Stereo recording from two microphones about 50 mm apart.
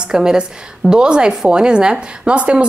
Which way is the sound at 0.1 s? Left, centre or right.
Centre.